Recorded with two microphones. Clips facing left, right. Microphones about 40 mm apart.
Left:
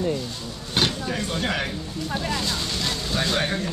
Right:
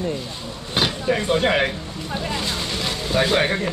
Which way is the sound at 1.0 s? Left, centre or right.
Right.